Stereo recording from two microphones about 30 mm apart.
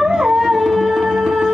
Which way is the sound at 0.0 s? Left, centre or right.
Centre.